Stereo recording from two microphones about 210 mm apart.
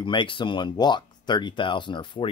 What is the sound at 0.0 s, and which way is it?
Speech, 25° left (ahead or behind).